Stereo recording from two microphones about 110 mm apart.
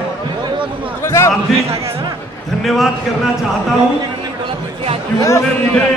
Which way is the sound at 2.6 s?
Centre (ahead or behind).